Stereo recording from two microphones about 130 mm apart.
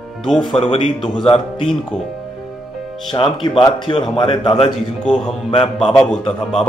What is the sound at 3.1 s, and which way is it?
Speech, 40° left (ahead or behind).